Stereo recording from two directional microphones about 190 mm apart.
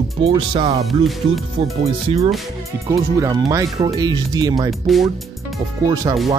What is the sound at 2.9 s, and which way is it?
Speech, 15° right (ahead or behind).